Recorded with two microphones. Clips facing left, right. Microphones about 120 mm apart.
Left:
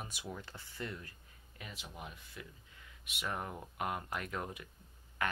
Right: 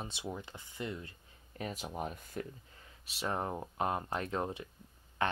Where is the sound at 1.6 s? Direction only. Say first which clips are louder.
Right 10 dB; 40° right (ahead or behind).